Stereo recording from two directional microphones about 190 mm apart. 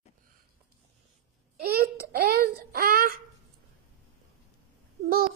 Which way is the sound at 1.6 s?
55° right (ahead or behind).